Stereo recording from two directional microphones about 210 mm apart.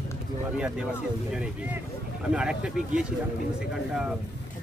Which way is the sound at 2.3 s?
5° right (ahead or behind).